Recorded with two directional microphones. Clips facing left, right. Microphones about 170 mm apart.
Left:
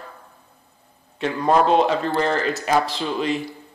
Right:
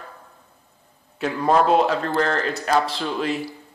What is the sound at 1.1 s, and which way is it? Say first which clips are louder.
Speech: even; 5° right (ahead or behind).